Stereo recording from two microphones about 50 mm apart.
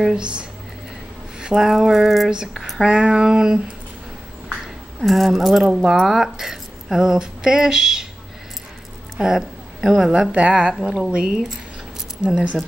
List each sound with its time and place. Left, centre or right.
0.1 s speech: centre
2.8 s speech: centre
5.0 s speech: centre
5.7 s speech: centre
5.9 s speech: centre
9.2 s a woman's voice: centre
10.1 s speech: right